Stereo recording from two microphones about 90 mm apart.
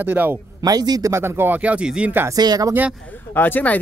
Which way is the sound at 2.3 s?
45° right (ahead or behind).